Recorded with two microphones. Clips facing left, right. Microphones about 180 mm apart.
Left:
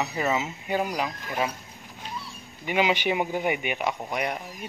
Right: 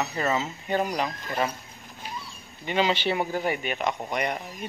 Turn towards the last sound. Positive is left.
turn(degrees=5)  # may be behind; listen again after turning